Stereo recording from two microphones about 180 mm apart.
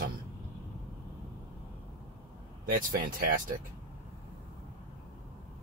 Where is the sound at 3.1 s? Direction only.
50° right (ahead or behind).